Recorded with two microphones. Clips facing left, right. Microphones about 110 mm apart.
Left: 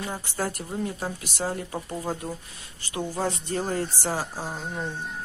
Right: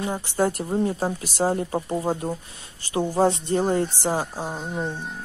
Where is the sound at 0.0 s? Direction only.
25° right (ahead or behind).